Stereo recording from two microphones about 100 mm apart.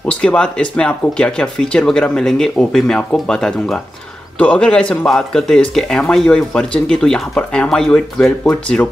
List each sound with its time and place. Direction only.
0.0 s speech: 15° left (ahead or behind)